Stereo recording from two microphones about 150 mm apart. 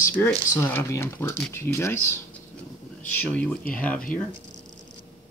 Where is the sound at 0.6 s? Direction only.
15° left (ahead or behind).